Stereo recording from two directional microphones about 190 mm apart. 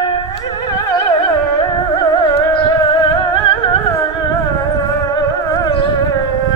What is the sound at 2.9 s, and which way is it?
Music, 25° left (ahead or behind).